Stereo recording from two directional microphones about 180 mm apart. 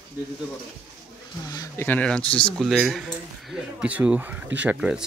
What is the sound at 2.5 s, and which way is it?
Speech, centre (ahead or behind).